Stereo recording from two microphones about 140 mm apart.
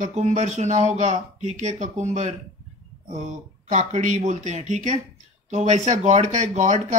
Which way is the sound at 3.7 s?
60° right (ahead or behind).